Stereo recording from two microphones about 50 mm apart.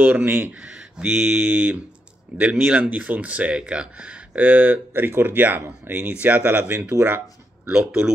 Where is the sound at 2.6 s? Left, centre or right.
Right.